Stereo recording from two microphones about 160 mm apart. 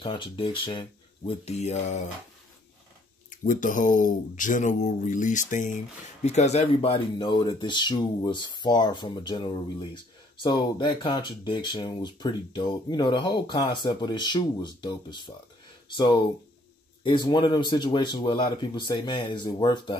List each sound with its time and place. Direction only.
0.0 s speech: 30° left (ahead or behind)
3.3 s speech: 55° left (ahead or behind); by 20.0 s 25° left (ahead or behind)